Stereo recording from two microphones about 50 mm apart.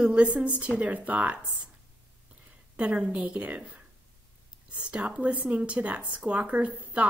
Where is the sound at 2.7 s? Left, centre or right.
Right.